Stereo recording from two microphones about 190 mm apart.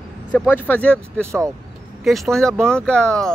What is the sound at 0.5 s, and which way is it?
Speech, 10° left (ahead or behind).